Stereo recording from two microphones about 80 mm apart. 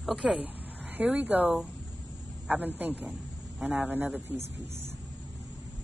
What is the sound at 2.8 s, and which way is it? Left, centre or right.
A man's voice, centre.